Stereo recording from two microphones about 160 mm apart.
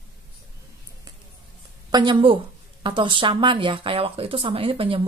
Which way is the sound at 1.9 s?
30° right (ahead or behind).